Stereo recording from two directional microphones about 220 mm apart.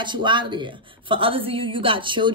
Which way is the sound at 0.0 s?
20° right (ahead or behind).